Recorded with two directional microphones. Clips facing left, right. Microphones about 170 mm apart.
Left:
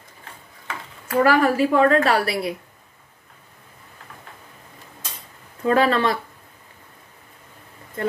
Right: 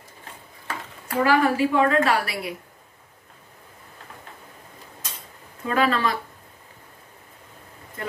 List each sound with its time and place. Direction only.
1.2 s a woman's voice: 45° left (ahead or behind)
5.7 s a woman's voice: 30° left (ahead or behind)